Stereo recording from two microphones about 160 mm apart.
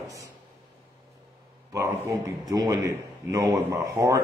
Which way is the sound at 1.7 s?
20° right (ahead or behind).